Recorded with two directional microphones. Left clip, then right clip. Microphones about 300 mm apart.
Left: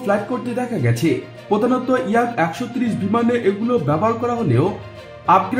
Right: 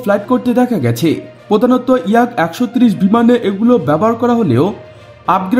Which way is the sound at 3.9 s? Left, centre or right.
Right.